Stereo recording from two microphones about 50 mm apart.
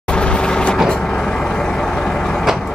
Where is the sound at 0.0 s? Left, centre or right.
Left.